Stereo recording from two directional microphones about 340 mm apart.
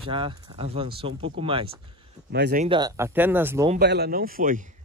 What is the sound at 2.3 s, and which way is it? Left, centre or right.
Speech, right.